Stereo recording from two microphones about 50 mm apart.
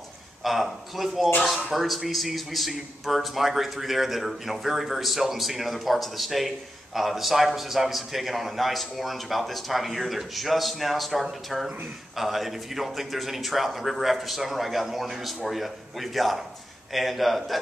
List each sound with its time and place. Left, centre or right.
0.4 s a man's voice: centre